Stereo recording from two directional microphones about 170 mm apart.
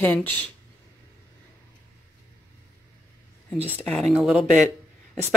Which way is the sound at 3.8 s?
10° left (ahead or behind).